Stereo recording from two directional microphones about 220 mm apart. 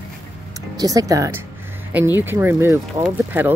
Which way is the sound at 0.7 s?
15° right (ahead or behind).